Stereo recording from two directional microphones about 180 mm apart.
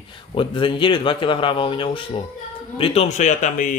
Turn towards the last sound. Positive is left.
turn(degrees=45)  # may be behind; listen again after turning